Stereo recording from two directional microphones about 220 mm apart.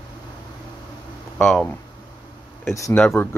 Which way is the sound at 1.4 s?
5° left (ahead or behind).